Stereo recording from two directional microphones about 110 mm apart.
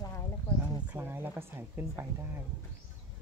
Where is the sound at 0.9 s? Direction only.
20° right (ahead or behind).